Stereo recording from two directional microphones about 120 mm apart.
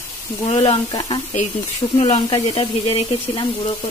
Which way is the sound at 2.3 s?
40° left (ahead or behind).